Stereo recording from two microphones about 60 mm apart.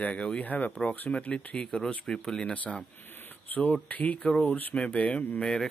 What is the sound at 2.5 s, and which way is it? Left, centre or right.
Speech, left.